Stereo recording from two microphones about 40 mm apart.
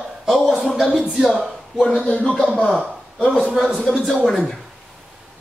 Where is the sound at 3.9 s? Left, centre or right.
Centre.